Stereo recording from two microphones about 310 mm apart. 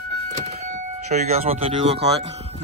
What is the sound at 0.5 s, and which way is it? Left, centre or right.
Speech, right.